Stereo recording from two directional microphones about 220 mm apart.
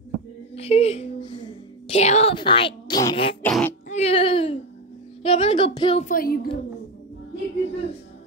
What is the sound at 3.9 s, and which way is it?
Speech, 30° left (ahead or behind).